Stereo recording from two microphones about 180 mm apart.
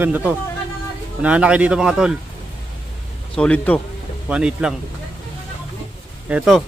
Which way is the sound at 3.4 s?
5° left (ahead or behind).